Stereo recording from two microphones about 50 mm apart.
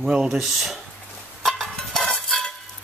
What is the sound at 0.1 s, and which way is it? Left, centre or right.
Speech, right.